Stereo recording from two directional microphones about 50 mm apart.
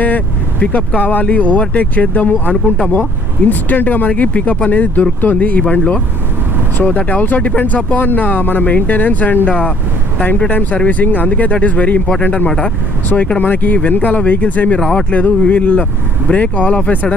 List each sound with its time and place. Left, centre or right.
0.0 s vehicle: left
0.7 s speech: left
4.1 s speech: left
5.6 s speech: left
10.5 s speech: left
14.8 s speech: centre
15.0 s speech: left